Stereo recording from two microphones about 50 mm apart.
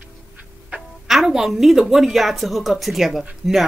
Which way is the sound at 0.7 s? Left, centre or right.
Centre.